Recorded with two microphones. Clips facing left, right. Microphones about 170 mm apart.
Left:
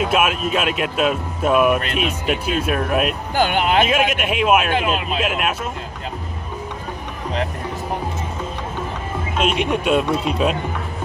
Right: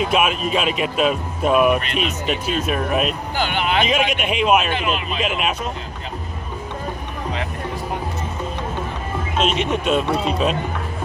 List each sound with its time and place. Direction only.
0.0 s speech: 5° left (ahead or behind)
3.3 s speech: 45° left (ahead or behind)
4.1 s speech: 5° left (ahead or behind)
9.4 s speech: 10° left (ahead or behind)